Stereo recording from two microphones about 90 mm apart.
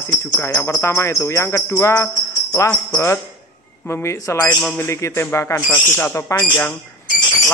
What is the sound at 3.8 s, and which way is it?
Speech, 30° left (ahead or behind).